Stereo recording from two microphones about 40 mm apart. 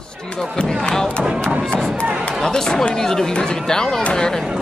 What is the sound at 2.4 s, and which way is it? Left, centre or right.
A man's voice, centre.